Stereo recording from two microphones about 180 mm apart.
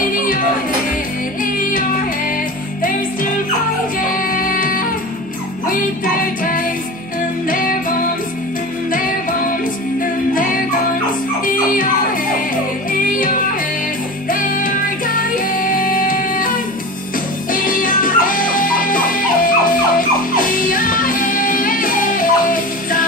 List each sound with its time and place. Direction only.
1.4 s music: 50° left (ahead or behind)
4.1 s music: 50° left (ahead or behind)
6.4 s music: 50° left (ahead or behind)
10.3 s music: 50° left (ahead or behind)
14.3 s music: 50° left (ahead or behind)